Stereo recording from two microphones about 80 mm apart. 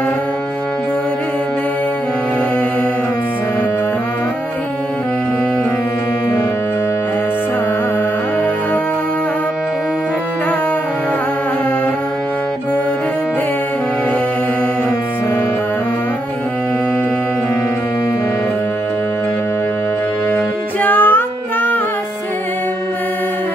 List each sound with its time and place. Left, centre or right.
20.8 s music: left